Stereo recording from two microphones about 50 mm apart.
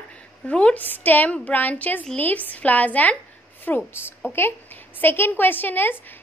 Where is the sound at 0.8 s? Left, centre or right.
Left.